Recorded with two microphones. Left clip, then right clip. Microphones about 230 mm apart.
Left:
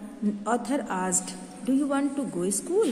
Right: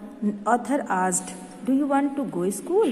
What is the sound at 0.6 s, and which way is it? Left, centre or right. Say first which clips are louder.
A woman's voice: right 5 dB; centre.